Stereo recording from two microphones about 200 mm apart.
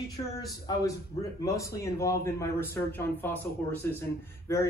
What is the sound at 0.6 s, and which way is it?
Speech, 15° left (ahead or behind).